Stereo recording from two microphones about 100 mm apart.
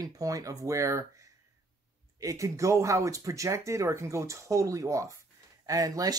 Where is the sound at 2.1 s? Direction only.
35° right (ahead or behind).